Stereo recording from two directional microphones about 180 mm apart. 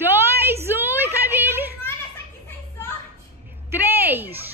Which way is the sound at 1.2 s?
10° right (ahead or behind).